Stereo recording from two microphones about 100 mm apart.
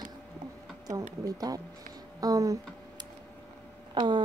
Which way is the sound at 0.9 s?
35° right (ahead or behind).